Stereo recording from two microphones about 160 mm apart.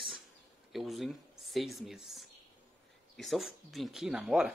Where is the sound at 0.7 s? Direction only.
Centre (ahead or behind).